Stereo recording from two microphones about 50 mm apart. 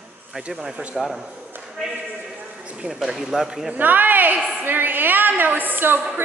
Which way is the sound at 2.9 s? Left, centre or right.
Centre.